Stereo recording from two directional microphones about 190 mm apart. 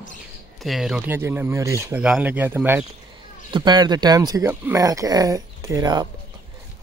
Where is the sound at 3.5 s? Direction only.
25° right (ahead or behind).